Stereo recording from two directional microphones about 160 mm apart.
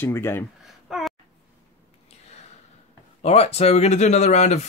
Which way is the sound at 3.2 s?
40° left (ahead or behind).